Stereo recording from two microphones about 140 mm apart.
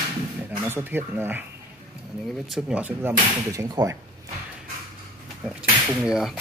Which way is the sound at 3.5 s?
25° right (ahead or behind).